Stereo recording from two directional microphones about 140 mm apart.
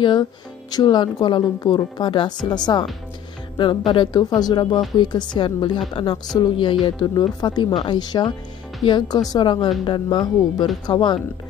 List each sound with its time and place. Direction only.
0.0 s speech: 30° left (ahead or behind)